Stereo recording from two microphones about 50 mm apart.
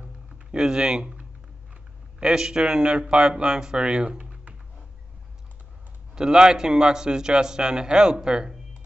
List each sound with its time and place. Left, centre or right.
0.0 s a sound: centre
2.1 s a man's voice: centre
6.1 s a man's voice: centre